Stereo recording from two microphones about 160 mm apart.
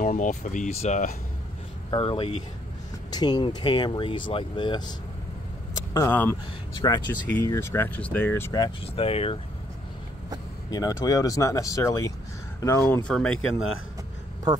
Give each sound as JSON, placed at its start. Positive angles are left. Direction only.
{"t": 0.0, "sound": "speech", "side_deg": 55}
{"t": 1.9, "sound": "speech", "side_deg": 35}
{"t": 5.9, "sound": "speech", "side_deg": 15}
{"t": 6.7, "sound": "speech", "side_deg": 25}
{"t": 7.1, "sound": "speech", "side_deg": 10}
{"t": 8.9, "sound": "speech", "side_deg": 35}
{"t": 10.7, "sound": "speech", "side_deg": 20}